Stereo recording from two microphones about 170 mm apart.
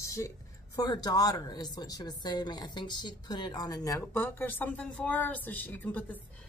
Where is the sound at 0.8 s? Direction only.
25° left (ahead or behind).